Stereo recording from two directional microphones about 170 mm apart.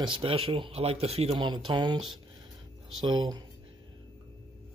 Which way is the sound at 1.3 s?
25° right (ahead or behind).